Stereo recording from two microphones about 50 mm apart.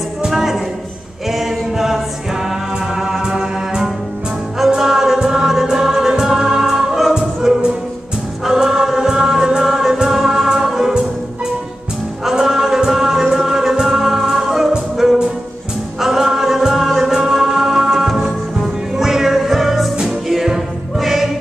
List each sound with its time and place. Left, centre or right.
0.2 s music: centre
1.3 s choir: centre
3.0 s music: centre
12.3 s music: centre